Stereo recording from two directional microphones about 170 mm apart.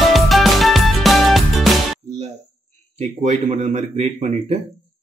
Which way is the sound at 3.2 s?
45° right (ahead or behind).